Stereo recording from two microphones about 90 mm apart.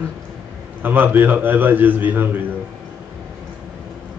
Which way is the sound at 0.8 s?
20° right (ahead or behind).